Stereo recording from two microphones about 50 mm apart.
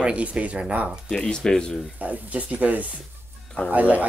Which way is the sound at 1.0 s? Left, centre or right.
Centre.